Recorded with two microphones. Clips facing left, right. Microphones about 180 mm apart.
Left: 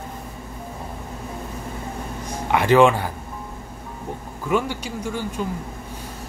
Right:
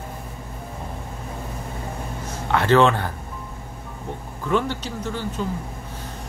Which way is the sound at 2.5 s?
15° left (ahead or behind).